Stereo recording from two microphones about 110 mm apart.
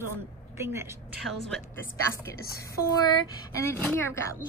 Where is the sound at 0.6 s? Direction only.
25° right (ahead or behind).